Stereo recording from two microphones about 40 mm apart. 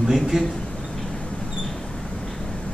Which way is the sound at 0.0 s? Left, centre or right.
Centre.